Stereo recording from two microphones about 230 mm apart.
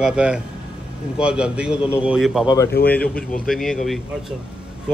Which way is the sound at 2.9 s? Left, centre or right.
Centre.